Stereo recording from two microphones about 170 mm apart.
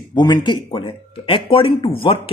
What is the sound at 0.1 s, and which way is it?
Speech, 25° left (ahead or behind).